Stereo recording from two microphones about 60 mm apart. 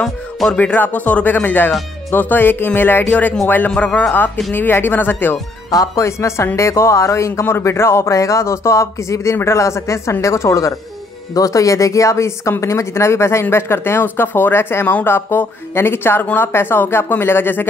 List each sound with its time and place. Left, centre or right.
0.6 s speech: left
3.7 s speech: left
4.5 s speech: left
5.9 s speech: left
11.3 s speech: left